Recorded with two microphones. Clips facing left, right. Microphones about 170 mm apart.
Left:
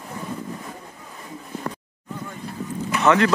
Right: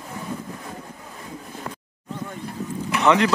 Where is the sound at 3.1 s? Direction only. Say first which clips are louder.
Left 1 dB; 15° right (ahead or behind).